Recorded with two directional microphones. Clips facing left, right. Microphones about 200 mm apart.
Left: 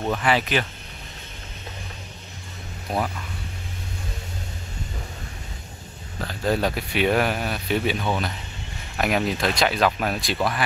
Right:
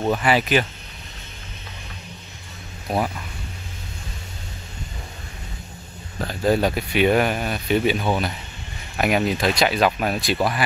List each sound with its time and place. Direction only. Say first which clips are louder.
0.0 s speech: right 3 dB; 20° right (ahead or behind)
0.3 s speech: right 3 dB; 10° right (ahead or behind)
2.9 s speech: right 3 dB; 5° right (ahead or behind)
6.4 s speech: right 4 dB; 5° right (ahead or behind)